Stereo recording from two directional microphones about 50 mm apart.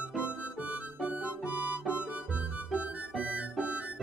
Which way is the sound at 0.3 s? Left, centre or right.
Right.